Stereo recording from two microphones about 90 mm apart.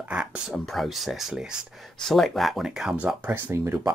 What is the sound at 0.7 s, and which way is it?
Speech, centre (ahead or behind).